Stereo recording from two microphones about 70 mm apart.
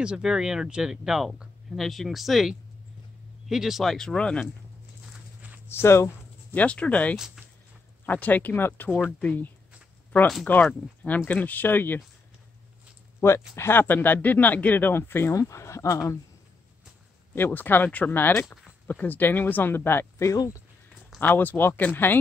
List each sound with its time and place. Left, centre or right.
0.0 s speech: centre
5.7 s speech: left
6.5 s speech: centre
7.2 s speech: centre
8.0 s speech: left
13.2 s speech: left
15.3 s speech: left
17.4 s speech: left
21.2 s speech: left